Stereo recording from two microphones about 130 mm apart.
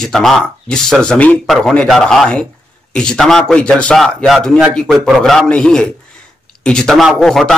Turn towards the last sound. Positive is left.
turn(degrees=0)  # may be behind; listen again after turning